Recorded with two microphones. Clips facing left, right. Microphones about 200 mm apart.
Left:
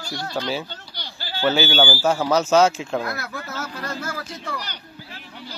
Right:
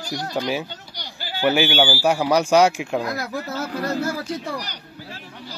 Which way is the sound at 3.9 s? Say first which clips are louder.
Right 7 dB; 35° right (ahead or behind).